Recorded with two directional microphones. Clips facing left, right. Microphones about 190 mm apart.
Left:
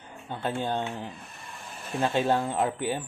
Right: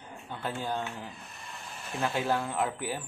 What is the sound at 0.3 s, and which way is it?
Speech, 25° left (ahead or behind).